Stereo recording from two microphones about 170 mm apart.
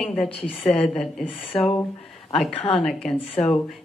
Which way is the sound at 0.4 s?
35° left (ahead or behind).